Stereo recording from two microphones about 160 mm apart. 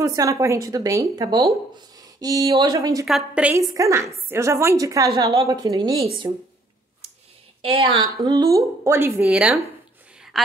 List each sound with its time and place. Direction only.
0.0 s speech: 20° right (ahead or behind)
3.1 s a woman's voice: 5° right (ahead or behind)
3.7 s speech: 20° right (ahead or behind)
7.6 s a woman's voice: 35° right (ahead or behind); by 10.5 s centre (ahead or behind)